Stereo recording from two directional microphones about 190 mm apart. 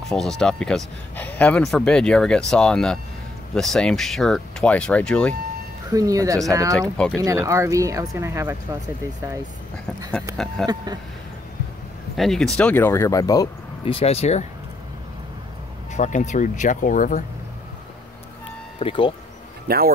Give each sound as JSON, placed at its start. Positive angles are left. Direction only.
{"t": 0.1, "sound": "speech", "side_deg": 0}
{"t": 5.9, "sound": "speech", "side_deg": -20}
{"t": 6.7, "sound": "speech", "side_deg": 5}
{"t": 7.2, "sound": "speech", "side_deg": -15}
{"t": 10.3, "sound": "speech", "side_deg": 0}
{"t": 12.2, "sound": "speech", "side_deg": 0}
{"t": 13.9, "sound": "speech", "side_deg": 35}
{"t": 15.9, "sound": "speech", "side_deg": 40}
{"t": 18.8, "sound": "speech", "side_deg": 25}
{"t": 19.7, "sound": "speech", "side_deg": -55}